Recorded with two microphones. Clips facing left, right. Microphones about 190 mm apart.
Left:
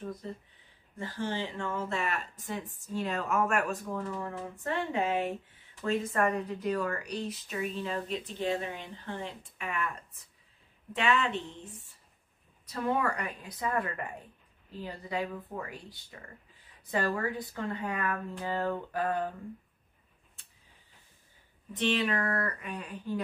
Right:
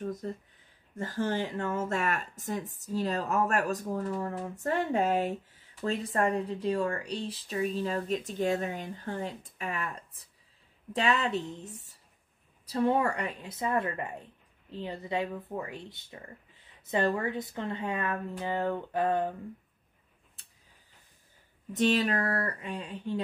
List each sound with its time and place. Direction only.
0.0 s speech: 45° right (ahead or behind)
12.6 s speech: 30° right (ahead or behind)
21.7 s speech: 40° right (ahead or behind)